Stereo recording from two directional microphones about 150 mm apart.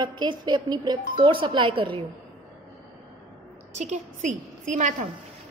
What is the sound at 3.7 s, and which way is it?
A woman's voice, 50° right (ahead or behind).